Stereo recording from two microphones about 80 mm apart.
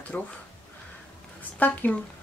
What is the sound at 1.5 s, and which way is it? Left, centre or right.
Speech, left.